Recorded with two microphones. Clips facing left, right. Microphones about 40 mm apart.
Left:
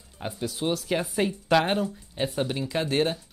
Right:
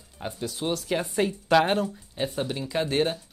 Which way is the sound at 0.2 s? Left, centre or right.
Centre.